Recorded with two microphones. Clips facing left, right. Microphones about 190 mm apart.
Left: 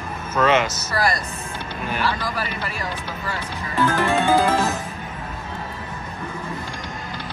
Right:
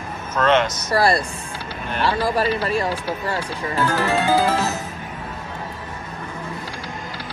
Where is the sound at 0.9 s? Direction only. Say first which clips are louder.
Right 5 dB; 30° right (ahead or behind).